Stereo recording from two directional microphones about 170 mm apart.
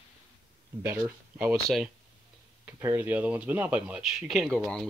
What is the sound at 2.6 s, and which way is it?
Speech, 15° right (ahead or behind).